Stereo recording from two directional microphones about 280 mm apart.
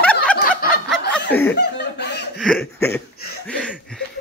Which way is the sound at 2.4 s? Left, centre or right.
Centre.